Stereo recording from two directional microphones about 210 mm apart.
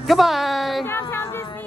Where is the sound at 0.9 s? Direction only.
10° left (ahead or behind).